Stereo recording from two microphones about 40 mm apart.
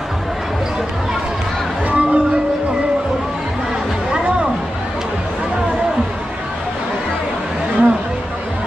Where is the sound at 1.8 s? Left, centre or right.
Right.